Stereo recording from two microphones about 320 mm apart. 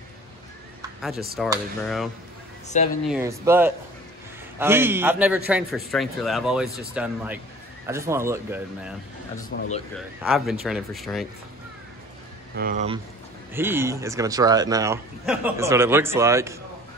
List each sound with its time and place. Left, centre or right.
1.4 s a man's voice: centre
2.7 s speech: left
3.1 s a man's voice: centre
10.2 s a man's voice: centre
12.5 s speech: right
13.5 s speech: centre